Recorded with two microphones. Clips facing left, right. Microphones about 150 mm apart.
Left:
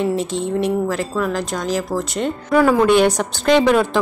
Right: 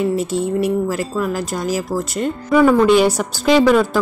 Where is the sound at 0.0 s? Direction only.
5° right (ahead or behind).